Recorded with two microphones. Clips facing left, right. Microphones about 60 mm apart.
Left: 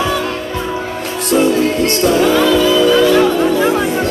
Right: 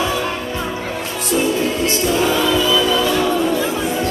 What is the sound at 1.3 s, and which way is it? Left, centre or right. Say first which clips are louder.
Music: left 6 dB; left.